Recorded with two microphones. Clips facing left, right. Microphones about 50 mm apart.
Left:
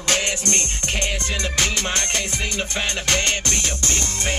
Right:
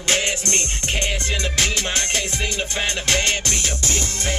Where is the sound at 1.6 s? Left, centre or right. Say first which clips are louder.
Even; left.